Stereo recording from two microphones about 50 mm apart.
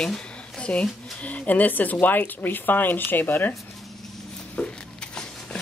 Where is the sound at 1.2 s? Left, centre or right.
Left.